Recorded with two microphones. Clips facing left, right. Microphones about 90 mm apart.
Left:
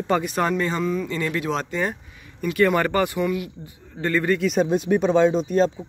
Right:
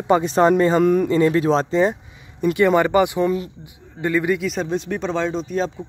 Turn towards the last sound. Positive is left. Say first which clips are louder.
# left 3 dB
turn(degrees=0)  # may be behind; listen again after turning